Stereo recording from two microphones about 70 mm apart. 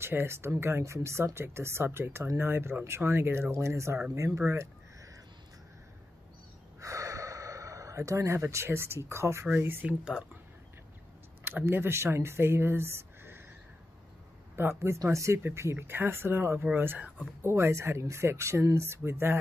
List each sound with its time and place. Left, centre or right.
0.0 s speech: right
6.8 s gasp: right
9.6 s speech: right
9.8 s speech: centre
11.4 s speech: right
14.5 s speech: right